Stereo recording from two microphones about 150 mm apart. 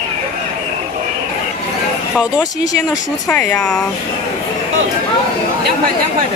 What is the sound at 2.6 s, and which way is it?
Speech, 25° left (ahead or behind).